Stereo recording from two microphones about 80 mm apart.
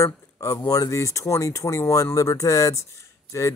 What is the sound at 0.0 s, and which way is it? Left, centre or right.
Speech, left.